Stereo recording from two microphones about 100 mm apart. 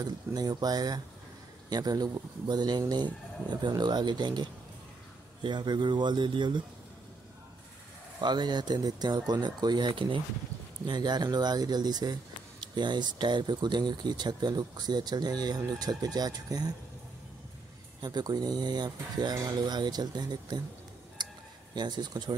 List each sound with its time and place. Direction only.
0.0 s speech: 40° right (ahead or behind)
8.2 s speech: 45° right (ahead or behind)
10.9 s speech: 45° right (ahead or behind)
18.0 s speech: 45° right (ahead or behind)
21.2 s a sound: 50° right (ahead or behind)
21.7 s speech: 45° right (ahead or behind)